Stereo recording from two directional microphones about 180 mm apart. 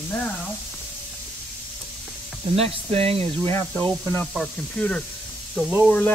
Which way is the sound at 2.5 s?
35° right (ahead or behind).